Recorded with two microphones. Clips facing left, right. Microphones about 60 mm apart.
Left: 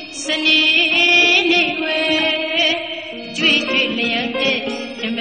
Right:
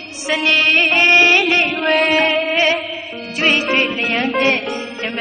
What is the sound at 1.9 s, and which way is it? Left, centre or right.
Music, right.